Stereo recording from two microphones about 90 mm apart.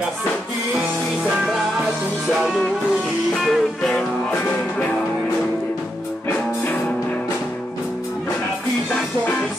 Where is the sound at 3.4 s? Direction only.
5° left (ahead or behind).